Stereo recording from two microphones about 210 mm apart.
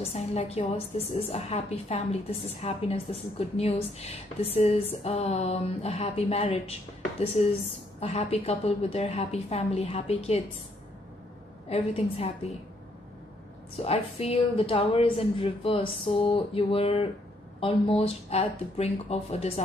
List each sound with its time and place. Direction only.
0.1 s a woman's voice: 30° left (ahead or behind)
11.7 s a woman's voice: 30° left (ahead or behind)
13.7 s a woman's voice: 30° left (ahead or behind)